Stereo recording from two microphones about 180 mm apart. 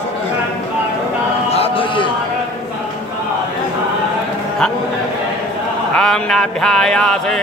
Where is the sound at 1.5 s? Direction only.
30° left (ahead or behind).